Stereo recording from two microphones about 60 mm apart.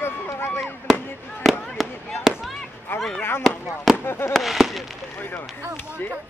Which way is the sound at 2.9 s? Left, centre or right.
Left.